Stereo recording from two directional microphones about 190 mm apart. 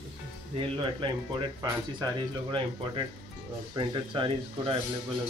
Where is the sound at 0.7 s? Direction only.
25° right (ahead or behind).